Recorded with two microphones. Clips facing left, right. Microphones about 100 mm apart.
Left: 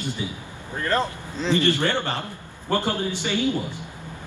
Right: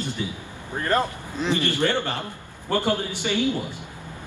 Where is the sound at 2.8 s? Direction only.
20° left (ahead or behind).